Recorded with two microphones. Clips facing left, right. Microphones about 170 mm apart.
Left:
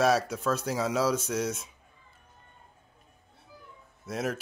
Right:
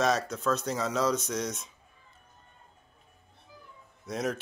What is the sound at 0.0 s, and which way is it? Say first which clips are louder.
Speech: left 2 dB; 10° left (ahead or behind).